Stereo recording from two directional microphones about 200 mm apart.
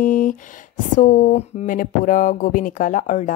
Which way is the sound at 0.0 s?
40° left (ahead or behind).